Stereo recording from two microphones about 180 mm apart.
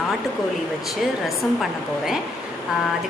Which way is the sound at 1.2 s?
Centre (ahead or behind).